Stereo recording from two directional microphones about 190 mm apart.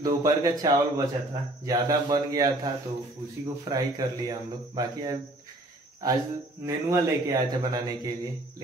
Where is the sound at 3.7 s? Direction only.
20° right (ahead or behind).